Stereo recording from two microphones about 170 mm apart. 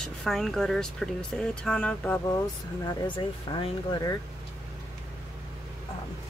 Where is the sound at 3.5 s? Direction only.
30° left (ahead or behind).